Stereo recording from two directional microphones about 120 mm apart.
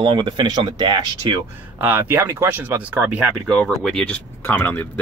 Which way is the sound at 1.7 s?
15° right (ahead or behind).